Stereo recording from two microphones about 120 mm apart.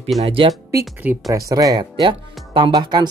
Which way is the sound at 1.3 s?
30° right (ahead or behind).